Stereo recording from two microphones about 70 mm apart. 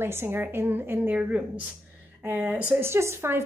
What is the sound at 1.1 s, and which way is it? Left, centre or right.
Speech, centre.